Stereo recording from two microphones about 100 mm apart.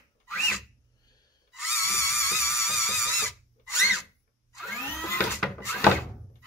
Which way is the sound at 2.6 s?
Centre (ahead or behind).